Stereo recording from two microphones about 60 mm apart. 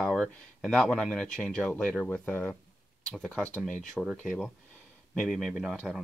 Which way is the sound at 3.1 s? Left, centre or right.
Centre.